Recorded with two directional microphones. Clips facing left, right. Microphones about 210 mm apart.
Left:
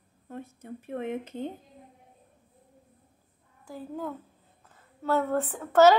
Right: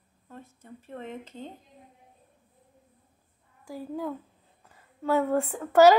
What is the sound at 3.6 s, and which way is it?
Speech, 10° right (ahead or behind).